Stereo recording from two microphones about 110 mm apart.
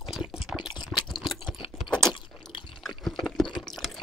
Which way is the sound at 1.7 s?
5° left (ahead or behind).